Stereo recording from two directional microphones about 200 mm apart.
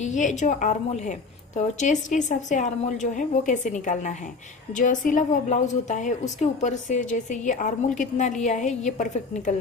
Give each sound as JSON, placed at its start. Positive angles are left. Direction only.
{"t": 0.0, "sound": "a woman's voice", "side_deg": 35}